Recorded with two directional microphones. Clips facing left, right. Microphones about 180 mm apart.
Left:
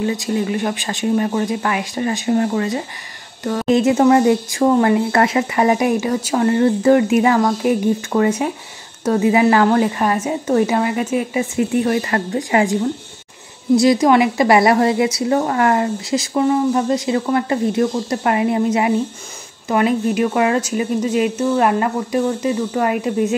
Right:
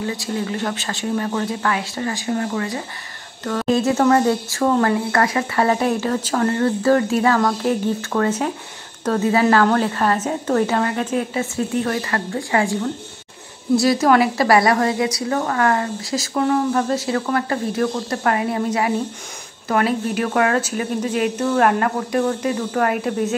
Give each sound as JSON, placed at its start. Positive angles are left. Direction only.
{"t": 0.0, "sound": "a woman's voice", "side_deg": 20}
{"t": 19.7, "sound": "speech", "side_deg": 10}